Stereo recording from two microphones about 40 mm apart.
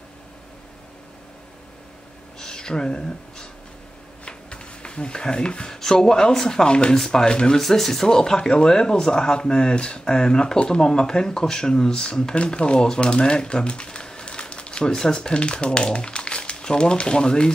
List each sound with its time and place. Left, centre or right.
2.3 s speech: centre
4.2 s a sound: left
5.7 s speech: centre
7.6 s speech: centre; by 17.5 s left